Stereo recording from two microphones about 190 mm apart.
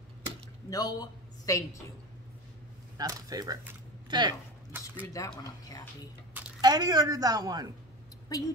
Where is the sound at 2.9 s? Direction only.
20° right (ahead or behind).